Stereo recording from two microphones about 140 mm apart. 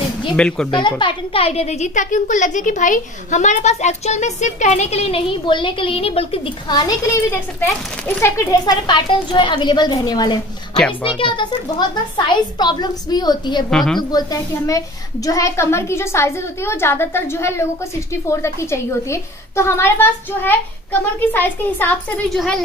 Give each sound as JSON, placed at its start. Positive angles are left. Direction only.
{"t": 0.4, "sound": "speech", "side_deg": 5}
{"t": 0.8, "sound": "a woman's voice", "side_deg": 35}
{"t": 13.7, "sound": "a woman's voice", "side_deg": 5}
{"t": 14.1, "sound": "a woman's voice", "side_deg": 25}